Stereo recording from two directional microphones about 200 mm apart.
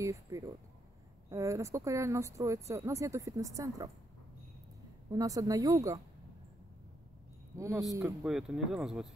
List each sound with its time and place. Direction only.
0.0 s a sound: 15° right (ahead or behind)
1.3 s a woman's voice: 15° right (ahead or behind)
5.1 s a woman's voice: 15° right (ahead or behind)
7.5 s a woman's voice: 15° right (ahead or behind)
8.2 s speech: centre (ahead or behind)